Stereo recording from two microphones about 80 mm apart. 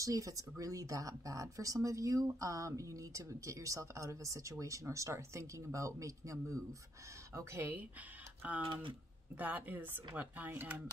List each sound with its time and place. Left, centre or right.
0.0 s speech: right
7.3 s speech: right
8.4 s speech: centre